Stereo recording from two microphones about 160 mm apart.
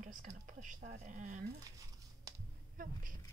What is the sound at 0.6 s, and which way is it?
Speech, 50° right (ahead or behind).